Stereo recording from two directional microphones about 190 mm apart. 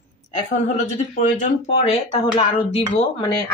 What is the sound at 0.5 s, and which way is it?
Speech, 40° left (ahead or behind).